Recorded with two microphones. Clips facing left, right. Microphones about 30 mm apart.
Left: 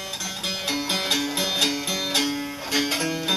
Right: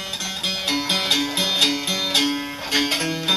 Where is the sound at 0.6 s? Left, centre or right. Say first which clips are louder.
Right 4 dB; right.